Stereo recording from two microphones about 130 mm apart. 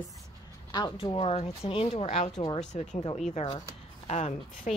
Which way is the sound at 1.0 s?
45° left (ahead or behind).